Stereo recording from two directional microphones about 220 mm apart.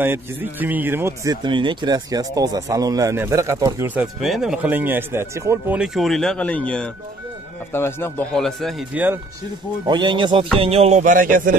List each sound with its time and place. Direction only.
0.0 s a man's voice: 10° right (ahead or behind)
9.8 s speech: 20° right (ahead or behind); by 11.5 s 40° right (ahead or behind)